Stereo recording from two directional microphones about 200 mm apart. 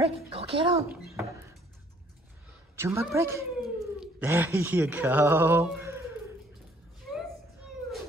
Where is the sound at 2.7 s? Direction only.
15° right (ahead or behind).